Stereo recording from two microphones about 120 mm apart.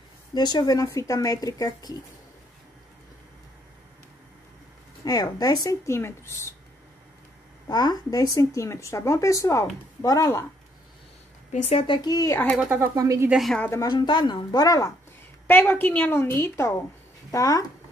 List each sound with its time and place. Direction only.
0.3 s a woman's voice: 35° left (ahead or behind)
5.0 s speech: 30° left (ahead or behind)
7.6 s speech: 35° left (ahead or behind)
11.5 s speech: 60° left (ahead or behind)
11.8 s a woman's voice: 40° left (ahead or behind)
12.5 s speech: 15° right (ahead or behind)
12.9 s speech: 25° right (ahead or behind)
13.3 s a woman's voice: centre (ahead or behind)
13.7 s speech: 25° left (ahead or behind)
13.9 s a woman's voice: 40° left (ahead or behind)
15.4 s a woman's voice: 15° left (ahead or behind)